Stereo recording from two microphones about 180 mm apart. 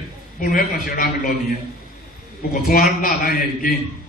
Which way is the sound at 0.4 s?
50° left (ahead or behind).